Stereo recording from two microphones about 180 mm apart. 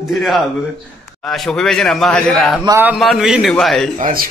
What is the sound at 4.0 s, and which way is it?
Speech, 55° right (ahead or behind).